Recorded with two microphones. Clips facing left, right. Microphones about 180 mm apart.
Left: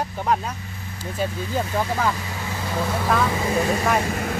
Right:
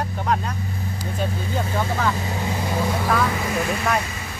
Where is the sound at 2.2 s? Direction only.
25° right (ahead or behind).